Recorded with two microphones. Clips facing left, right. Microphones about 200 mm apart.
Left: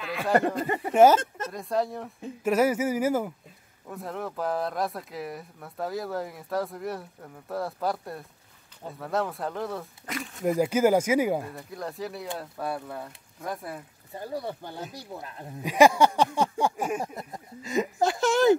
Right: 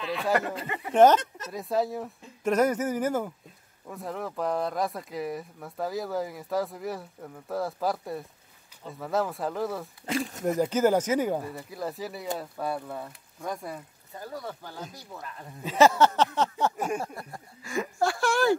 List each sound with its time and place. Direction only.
0.0 s speech: centre (ahead or behind)
0.6 s speech: 40° left (ahead or behind)
0.9 s speech: 10° left (ahead or behind)
10.1 s speech: 25° right (ahead or behind)
10.4 s speech: 10° left (ahead or behind)
11.4 s speech: 5° right (ahead or behind)
14.2 s speech: 25° left (ahead or behind); by 17.1 s 10° left (ahead or behind)
17.1 s speech: 20° left (ahead or behind)